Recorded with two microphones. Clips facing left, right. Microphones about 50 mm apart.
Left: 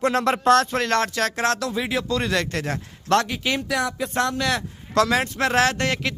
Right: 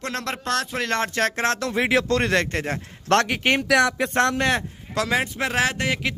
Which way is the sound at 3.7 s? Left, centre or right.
Right.